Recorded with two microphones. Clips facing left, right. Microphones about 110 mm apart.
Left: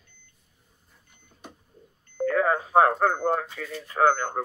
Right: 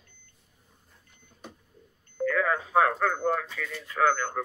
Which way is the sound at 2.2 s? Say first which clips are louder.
Left 3 dB; 30° left (ahead or behind).